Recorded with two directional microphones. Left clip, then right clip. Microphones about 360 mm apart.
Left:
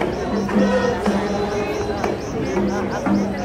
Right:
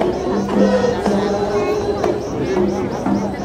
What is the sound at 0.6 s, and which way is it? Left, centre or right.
Music, right.